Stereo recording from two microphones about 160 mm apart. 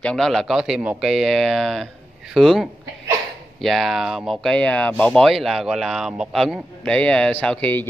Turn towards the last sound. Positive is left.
turn(degrees=10)  # may be behind; listen again after turning